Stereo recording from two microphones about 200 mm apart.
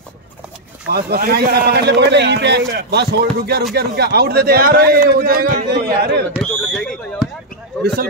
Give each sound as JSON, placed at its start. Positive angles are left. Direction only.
{"t": 0.9, "sound": "a man's voice", "side_deg": -50}
{"t": 6.4, "sound": "speech", "side_deg": 5}